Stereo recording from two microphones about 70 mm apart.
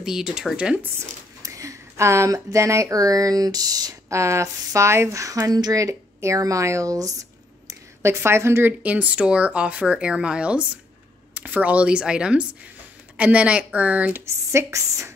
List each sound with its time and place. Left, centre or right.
0.0 s speech: centre
1.4 s speech: right
4.1 s speech: right
8.0 s speech: right
8.8 s speech: right
14.1 s speech: right